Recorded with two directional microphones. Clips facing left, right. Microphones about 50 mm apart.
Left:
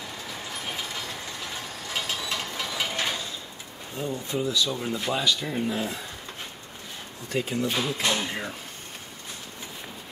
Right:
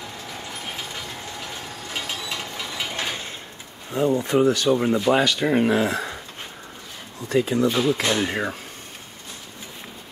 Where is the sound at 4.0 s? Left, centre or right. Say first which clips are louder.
Right 10 dB; right.